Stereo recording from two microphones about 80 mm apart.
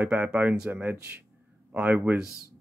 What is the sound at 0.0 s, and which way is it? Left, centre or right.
Speech, right.